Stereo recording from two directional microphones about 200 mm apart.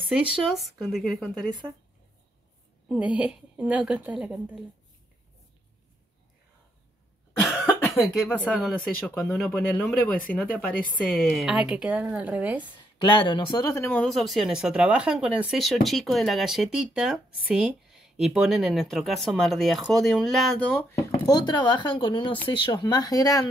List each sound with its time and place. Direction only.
0.1 s speech: centre (ahead or behind)
2.9 s speech: 5° right (ahead or behind)
7.6 s cough: 10° left (ahead or behind)
8.1 s speech: centre (ahead or behind)
11.1 s speech: centre (ahead or behind)
13.0 s speech: 25° left (ahead or behind); by 21.1 s 5° left (ahead or behind)
21.3 s speech: 20° left (ahead or behind)